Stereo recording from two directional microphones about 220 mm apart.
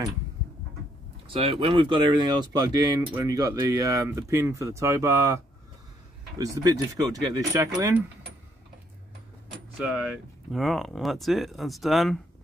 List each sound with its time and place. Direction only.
1.2 s speech: 25° right (ahead or behind); by 8.0 s 5° right (ahead or behind)
9.8 s speech: 5° right (ahead or behind)